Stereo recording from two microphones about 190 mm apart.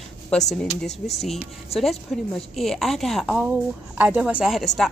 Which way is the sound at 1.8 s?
Centre (ahead or behind).